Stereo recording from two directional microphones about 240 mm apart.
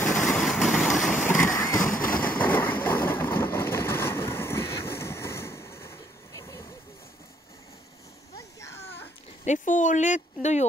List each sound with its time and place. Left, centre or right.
0.0 s vehicle: centre
1.3 s vehicle: centre
9.4 s speech: left